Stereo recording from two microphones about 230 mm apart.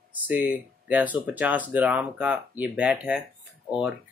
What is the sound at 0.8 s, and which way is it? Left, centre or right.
Speech, centre.